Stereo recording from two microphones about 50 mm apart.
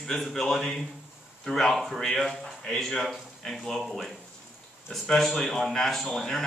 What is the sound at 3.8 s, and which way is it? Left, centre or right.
Speech, centre.